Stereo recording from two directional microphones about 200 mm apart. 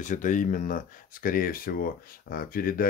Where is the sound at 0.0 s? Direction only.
40° left (ahead or behind).